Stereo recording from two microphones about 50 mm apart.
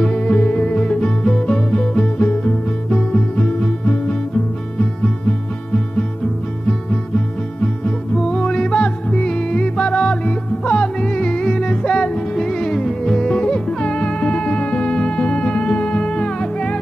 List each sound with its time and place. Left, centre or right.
0.0 s music: centre
2.1 s music: left
7.6 s music: centre